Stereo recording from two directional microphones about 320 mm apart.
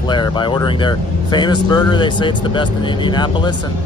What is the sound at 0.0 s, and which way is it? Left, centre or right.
Speech, centre.